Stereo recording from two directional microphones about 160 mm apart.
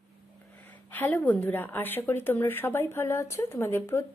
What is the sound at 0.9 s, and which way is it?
A woman's voice, 10° left (ahead or behind).